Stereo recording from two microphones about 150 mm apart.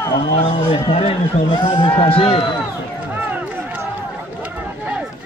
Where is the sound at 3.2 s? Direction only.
10° right (ahead or behind).